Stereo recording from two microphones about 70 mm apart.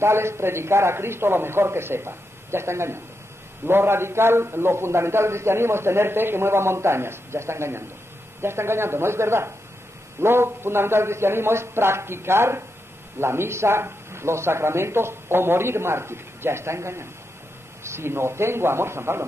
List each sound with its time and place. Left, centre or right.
0.0 s a man's voice: right